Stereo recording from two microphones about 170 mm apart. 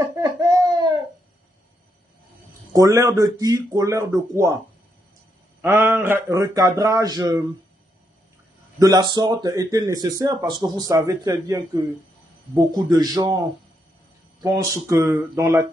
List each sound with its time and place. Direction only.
0.1 s baby cry: 20° right (ahead or behind)
2.7 s speech: 20° right (ahead or behind)
5.6 s speech: 15° right (ahead or behind)
8.7 s speech: 20° right (ahead or behind)
14.4 s speech: 20° right (ahead or behind)